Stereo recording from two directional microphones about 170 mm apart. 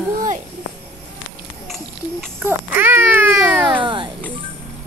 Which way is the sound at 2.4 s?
15° right (ahead or behind).